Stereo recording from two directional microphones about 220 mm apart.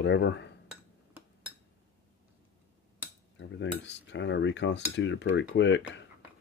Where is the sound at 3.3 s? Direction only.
55° left (ahead or behind).